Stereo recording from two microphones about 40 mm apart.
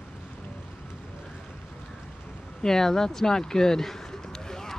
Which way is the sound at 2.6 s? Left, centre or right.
Centre.